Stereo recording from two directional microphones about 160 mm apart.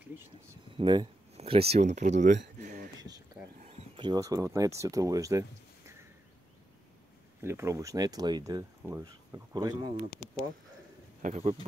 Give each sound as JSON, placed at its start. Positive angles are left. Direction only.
{"t": 0.7, "sound": "speech", "side_deg": -30}
{"t": 1.3, "sound": "speech", "side_deg": -40}
{"t": 2.6, "sound": "a sound", "side_deg": -50}
{"t": 4.0, "sound": "speech", "side_deg": -25}
{"t": 7.4, "sound": "speech", "side_deg": -15}
{"t": 10.1, "sound": "speech", "side_deg": 5}
{"t": 11.2, "sound": "speech", "side_deg": -45}